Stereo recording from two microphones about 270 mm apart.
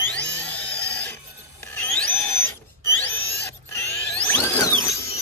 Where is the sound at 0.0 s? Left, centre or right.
Centre.